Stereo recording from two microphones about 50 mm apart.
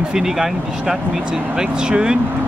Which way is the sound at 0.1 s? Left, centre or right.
Centre.